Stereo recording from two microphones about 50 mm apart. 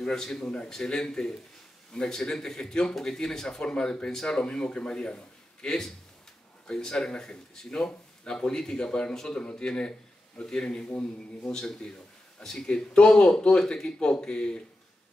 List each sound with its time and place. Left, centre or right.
0.0 s speech: centre